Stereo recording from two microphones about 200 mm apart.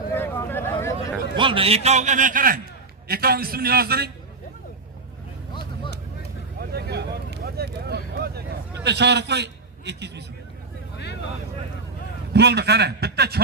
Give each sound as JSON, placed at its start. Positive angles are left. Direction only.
{"t": 0.1, "sound": "a sound", "side_deg": 10}
{"t": 1.3, "sound": "a man's voice", "side_deg": -25}
{"t": 6.7, "sound": "vehicle", "side_deg": -55}
{"t": 8.7, "sound": "a man's voice", "side_deg": -60}
{"t": 12.3, "sound": "a man's voice", "side_deg": -55}